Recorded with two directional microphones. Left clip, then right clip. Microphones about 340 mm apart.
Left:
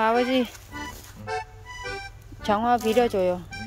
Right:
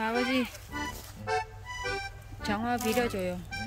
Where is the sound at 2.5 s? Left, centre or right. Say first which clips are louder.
Left 9 dB; centre.